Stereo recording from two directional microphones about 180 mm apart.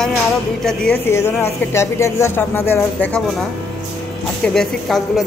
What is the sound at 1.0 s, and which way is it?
Speech, 15° left (ahead or behind).